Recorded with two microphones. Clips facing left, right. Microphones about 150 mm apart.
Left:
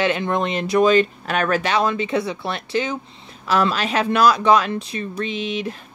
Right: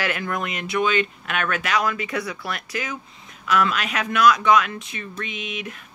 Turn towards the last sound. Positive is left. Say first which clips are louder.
# left 7 dB
turn(degrees=30)  # may be behind; listen again after turning